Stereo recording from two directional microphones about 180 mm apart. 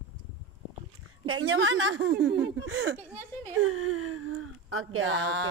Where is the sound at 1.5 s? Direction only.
90° right.